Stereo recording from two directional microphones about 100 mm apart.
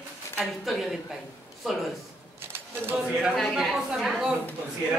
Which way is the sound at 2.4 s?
20° right (ahead or behind).